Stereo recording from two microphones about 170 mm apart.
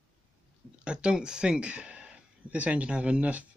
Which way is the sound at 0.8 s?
5° right (ahead or behind).